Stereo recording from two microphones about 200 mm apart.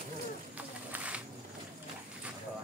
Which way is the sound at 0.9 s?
5° right (ahead or behind).